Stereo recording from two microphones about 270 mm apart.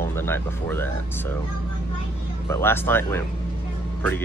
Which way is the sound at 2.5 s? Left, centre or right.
Centre.